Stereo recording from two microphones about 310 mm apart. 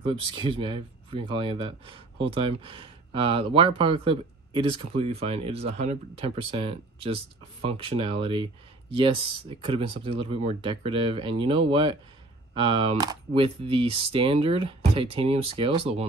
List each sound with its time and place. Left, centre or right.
0.0 s speech: centre
9.7 s speech: centre